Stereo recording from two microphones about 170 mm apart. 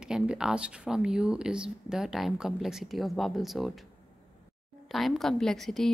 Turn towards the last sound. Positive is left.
turn(degrees=0)  # may be behind; listen again after turning